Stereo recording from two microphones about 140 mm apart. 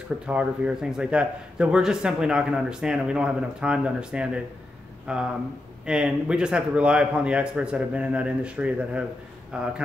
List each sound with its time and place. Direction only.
0.3 s a man's voice: 10° right (ahead or behind)